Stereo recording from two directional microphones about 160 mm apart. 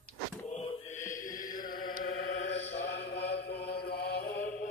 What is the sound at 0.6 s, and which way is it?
Mantra, 45° left (ahead or behind).